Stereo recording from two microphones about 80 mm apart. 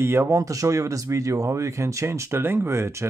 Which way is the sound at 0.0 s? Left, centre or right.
Right.